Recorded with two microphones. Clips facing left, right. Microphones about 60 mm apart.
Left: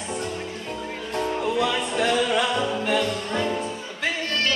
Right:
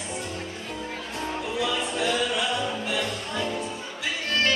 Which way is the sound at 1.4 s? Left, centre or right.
Left.